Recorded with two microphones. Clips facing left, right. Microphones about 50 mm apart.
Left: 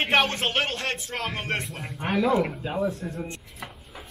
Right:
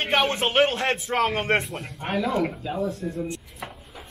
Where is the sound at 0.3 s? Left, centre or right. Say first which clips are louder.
Right 5 dB; centre.